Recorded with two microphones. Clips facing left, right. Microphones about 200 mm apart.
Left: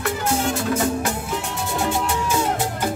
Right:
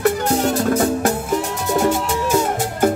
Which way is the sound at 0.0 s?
40° right (ahead or behind).